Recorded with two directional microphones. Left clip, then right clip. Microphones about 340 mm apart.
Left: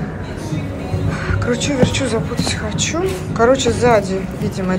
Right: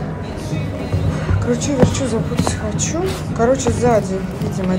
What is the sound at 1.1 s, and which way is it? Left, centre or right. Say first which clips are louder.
Speech: left 2 dB; centre.